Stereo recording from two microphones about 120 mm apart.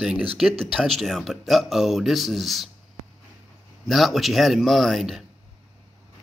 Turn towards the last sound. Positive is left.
turn(degrees=0)  # may be behind; listen again after turning